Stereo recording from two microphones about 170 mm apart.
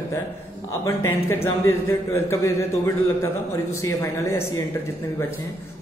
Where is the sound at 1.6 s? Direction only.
15° left (ahead or behind).